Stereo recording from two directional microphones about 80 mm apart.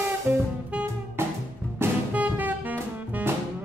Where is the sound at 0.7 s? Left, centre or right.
Centre.